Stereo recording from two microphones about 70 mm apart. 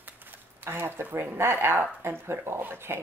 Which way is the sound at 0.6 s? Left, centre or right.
Right.